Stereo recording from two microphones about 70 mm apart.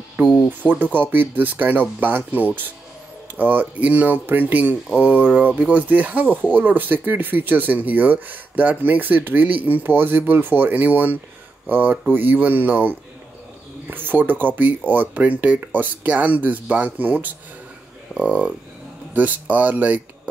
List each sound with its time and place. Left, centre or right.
0.2 s speech: right
0.6 s speech: centre
1.1 s speech: right